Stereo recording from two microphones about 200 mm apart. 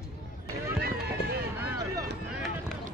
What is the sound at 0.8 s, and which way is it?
Run, 50° right (ahead or behind).